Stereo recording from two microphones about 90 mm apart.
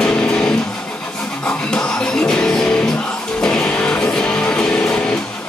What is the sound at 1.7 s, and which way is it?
Music, 10° left (ahead or behind).